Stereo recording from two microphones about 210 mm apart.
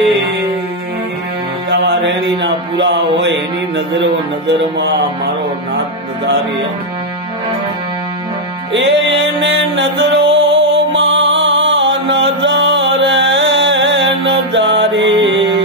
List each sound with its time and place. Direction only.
1.7 s mantra: 55° right (ahead or behind)
8.7 s music: 60° right (ahead or behind)